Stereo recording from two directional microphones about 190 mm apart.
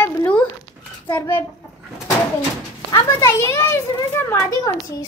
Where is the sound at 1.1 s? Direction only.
15° left (ahead or behind).